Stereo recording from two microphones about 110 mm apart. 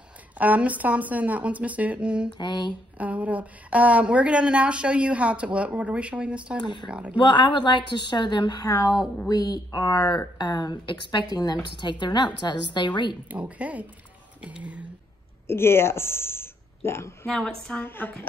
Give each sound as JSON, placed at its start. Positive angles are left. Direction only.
{"t": 0.4, "sound": "speech", "side_deg": -15}
{"t": 2.3, "sound": "a woman's voice", "side_deg": 45}
{"t": 3.0, "sound": "speech", "side_deg": -15}
{"t": 6.6, "sound": "a woman's voice", "side_deg": 45}
{"t": 6.9, "sound": "speech", "side_deg": -10}
{"t": 7.2, "sound": "a woman's voice", "side_deg": 45}
{"t": 13.3, "sound": "speech", "side_deg": -10}
{"t": 15.4, "sound": "speech", "side_deg": 20}
{"t": 17.3, "sound": "a woman's voice", "side_deg": 5}
{"t": 17.8, "sound": "a woman's voice", "side_deg": 20}